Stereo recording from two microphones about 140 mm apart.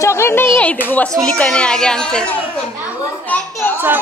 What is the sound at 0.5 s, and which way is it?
A woman's voice, 10° left (ahead or behind).